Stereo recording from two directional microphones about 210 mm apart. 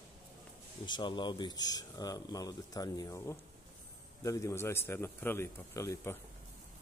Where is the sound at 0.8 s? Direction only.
20° left (ahead or behind).